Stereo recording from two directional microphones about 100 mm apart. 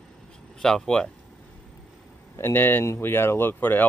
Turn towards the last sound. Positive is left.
turn(degrees=20)  # may be behind; listen again after turning